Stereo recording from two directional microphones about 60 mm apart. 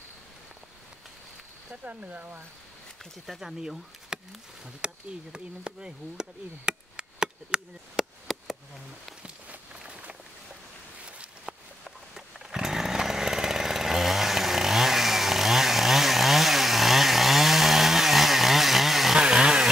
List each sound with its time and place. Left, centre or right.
1.7 s speech: right
3.3 s speech: centre
6.7 s chop: centre
8.0 s chop: centre
9.2 s a sound: right
11.8 s chainsaw: centre